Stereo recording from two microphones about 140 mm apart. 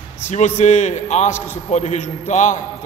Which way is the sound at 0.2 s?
60° left (ahead or behind).